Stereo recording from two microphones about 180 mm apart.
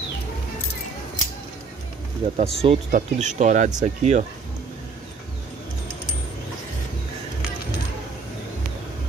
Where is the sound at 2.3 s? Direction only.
35° right (ahead or behind).